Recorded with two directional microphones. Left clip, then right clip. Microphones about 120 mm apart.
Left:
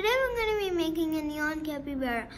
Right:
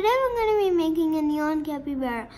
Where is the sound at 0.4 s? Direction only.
40° right (ahead or behind).